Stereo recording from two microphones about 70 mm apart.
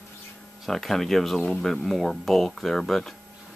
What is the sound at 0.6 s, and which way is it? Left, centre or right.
Speech, centre.